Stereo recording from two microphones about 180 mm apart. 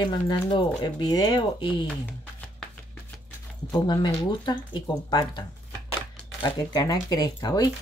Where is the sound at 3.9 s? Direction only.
25° left (ahead or behind).